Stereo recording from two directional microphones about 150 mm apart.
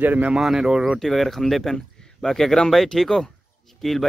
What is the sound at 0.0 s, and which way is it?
A man's voice, 10° right (ahead or behind).